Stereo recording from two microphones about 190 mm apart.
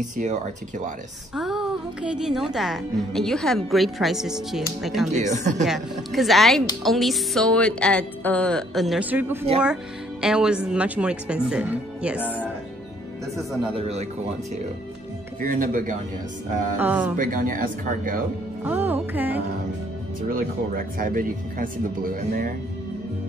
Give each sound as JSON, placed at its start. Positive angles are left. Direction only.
{"t": 0.2, "sound": "speech", "side_deg": -40}
{"t": 1.3, "sound": "speech", "side_deg": -5}
{"t": 5.1, "sound": "speech", "side_deg": -40}
{"t": 5.7, "sound": "speech", "side_deg": 0}
{"t": 12.2, "sound": "speech", "side_deg": 10}
{"t": 13.7, "sound": "speech", "side_deg": -35}
{"t": 15.4, "sound": "speech", "side_deg": -45}
{"t": 16.7, "sound": "music", "side_deg": -10}
{"t": 17.2, "sound": "speech", "side_deg": -45}
{"t": 18.6, "sound": "music", "side_deg": -10}
{"t": 20.2, "sound": "speech", "side_deg": -45}